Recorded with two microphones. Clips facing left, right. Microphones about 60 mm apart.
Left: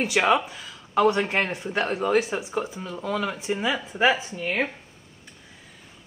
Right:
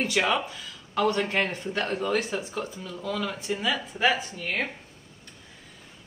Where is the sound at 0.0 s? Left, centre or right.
Centre.